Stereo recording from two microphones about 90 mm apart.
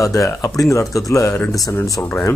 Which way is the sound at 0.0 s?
35° left (ahead or behind).